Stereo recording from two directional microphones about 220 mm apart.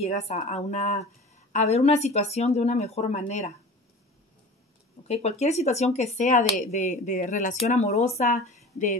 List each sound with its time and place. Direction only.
0.0 s a woman's voice: 30° left (ahead or behind)
5.0 s speech: 30° left (ahead or behind)